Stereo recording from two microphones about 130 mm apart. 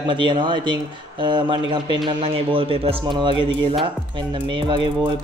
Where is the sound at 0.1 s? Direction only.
40° right (ahead or behind).